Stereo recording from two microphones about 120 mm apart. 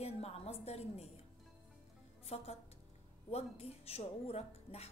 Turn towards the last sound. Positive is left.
turn(degrees=60)  # may be behind; listen again after turning